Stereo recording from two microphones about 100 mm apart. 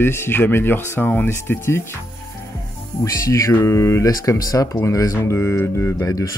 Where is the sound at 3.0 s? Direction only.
35° left (ahead or behind).